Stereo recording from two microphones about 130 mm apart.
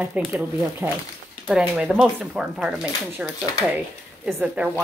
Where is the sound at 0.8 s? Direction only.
15° right (ahead or behind).